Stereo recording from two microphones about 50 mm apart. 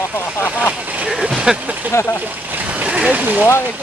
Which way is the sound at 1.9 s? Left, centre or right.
Left.